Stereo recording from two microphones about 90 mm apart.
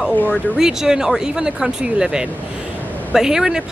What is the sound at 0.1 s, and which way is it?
Speech, 20° left (ahead or behind).